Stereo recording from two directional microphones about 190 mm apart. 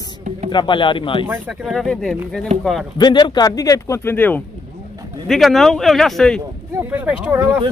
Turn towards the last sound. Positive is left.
turn(degrees=-10)  # may be behind; listen again after turning